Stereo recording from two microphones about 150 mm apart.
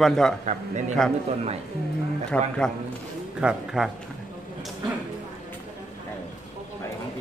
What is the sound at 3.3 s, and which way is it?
Speech, 5° right (ahead or behind).